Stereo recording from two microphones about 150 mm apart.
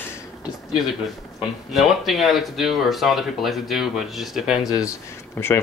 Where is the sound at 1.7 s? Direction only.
Centre (ahead or behind).